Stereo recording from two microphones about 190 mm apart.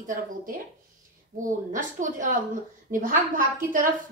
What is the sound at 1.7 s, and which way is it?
A woman's voice, 45° right (ahead or behind).